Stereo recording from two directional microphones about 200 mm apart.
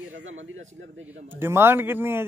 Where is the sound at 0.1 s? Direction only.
85° right.